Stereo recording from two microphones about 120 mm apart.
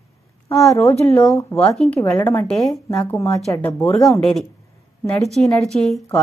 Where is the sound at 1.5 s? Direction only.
5° left (ahead or behind).